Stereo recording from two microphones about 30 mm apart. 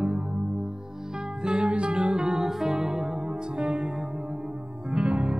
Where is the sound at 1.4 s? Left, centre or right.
Right.